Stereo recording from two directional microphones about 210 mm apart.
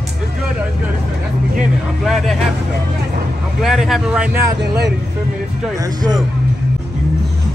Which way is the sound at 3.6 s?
Centre (ahead or behind).